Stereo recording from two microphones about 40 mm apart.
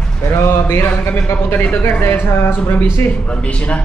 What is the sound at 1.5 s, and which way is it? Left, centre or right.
Speech, left.